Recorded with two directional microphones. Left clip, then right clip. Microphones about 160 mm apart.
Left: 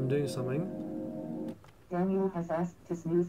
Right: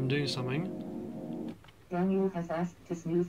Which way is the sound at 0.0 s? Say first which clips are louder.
Left 1 dB; 10° right (ahead or behind).